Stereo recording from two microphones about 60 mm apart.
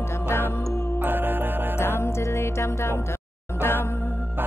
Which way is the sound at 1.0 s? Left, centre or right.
Right.